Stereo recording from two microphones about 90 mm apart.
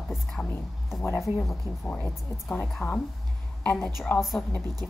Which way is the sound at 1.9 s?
20° left (ahead or behind).